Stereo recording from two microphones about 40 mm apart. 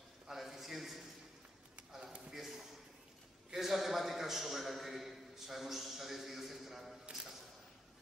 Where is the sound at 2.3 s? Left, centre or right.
Centre.